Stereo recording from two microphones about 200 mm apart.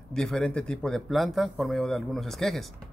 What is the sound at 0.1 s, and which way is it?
A man's voice, 5° left (ahead or behind).